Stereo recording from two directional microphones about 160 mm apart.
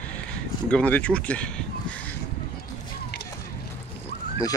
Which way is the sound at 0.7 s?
10° left (ahead or behind).